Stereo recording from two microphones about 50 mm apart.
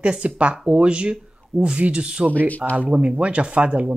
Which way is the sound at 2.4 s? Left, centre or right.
Left.